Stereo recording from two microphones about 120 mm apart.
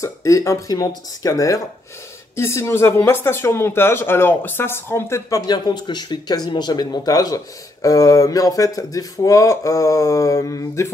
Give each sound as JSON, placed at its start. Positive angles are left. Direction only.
{"t": 0.0, "sound": "speech", "side_deg": 25}